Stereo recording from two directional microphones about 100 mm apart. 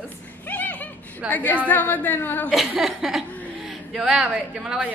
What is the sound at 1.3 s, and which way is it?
A woman's voice, 15° left (ahead or behind).